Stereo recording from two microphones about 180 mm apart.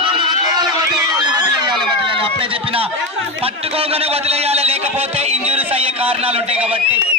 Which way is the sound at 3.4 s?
35° right (ahead or behind).